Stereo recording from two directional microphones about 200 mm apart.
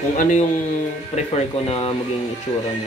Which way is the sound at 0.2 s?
35° left (ahead or behind).